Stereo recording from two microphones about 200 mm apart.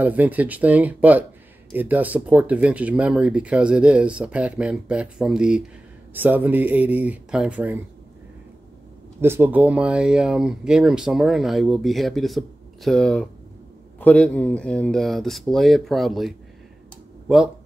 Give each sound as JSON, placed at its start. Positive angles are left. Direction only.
{"t": 0.0, "sound": "speech", "side_deg": -10}
{"t": 9.2, "sound": "speech", "side_deg": -10}